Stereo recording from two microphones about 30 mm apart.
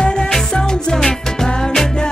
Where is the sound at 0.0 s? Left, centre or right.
Left.